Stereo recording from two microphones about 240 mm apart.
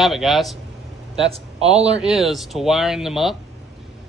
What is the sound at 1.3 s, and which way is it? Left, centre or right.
Speech, right.